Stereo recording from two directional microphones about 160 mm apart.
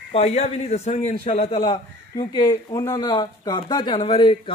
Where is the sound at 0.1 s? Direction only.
40° left (ahead or behind).